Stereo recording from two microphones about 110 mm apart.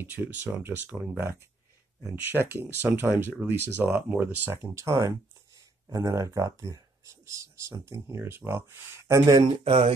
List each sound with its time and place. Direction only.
0.0 s speech: 20° right (ahead or behind)
2.2 s speech: 20° right (ahead or behind)
9.7 s speech: 60° right (ahead or behind)